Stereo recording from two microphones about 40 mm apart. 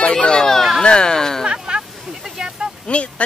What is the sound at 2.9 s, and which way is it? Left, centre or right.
Speech, left.